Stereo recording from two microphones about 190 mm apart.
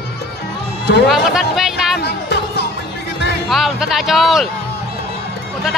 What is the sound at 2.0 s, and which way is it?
Music, 60° left (ahead or behind).